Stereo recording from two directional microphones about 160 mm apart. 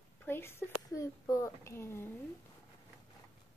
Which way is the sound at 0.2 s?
15° left (ahead or behind).